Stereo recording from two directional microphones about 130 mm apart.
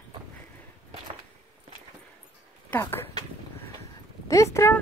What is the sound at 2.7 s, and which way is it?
Speech, 15° left (ahead or behind).